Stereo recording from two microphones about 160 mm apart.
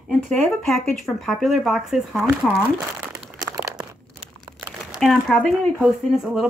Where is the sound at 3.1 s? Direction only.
15° right (ahead or behind).